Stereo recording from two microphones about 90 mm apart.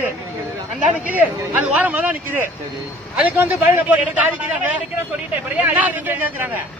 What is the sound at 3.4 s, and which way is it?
A man's voice, 20° right (ahead or behind).